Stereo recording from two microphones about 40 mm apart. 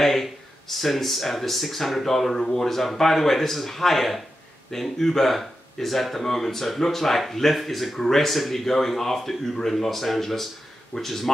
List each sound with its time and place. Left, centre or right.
0.0 s speech: centre
10.9 s speech: left